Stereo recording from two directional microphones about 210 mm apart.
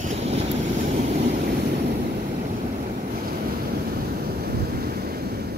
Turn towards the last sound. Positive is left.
turn(degrees=-45)  # may be behind; listen again after turning